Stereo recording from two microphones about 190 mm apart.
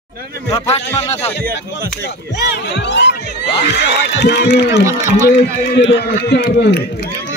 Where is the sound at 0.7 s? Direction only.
35° left (ahead or behind).